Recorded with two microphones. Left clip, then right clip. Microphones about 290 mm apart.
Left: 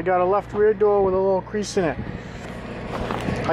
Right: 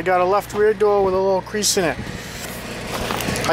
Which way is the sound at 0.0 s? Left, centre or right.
Centre.